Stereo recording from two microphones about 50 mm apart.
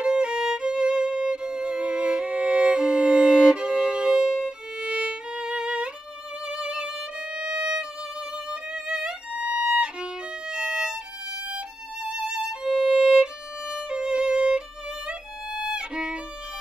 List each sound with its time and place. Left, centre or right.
0.0 s violin: centre
6.4 s music: centre
7.3 s violin: centre